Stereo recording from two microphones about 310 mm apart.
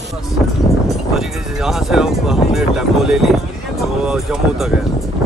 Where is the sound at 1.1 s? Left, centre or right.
Centre.